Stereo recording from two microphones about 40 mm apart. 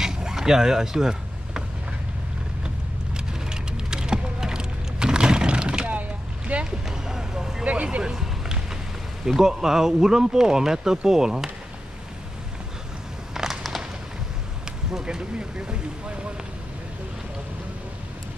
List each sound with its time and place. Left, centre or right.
0.0 s a sound: centre
3.2 s typing: centre
5.9 s boat: right
6.9 s vehicle: centre
7.6 s a sound: right
8.0 s run: centre
9.4 s speech: centre
13.3 s a sound: centre
14.9 s speech: centre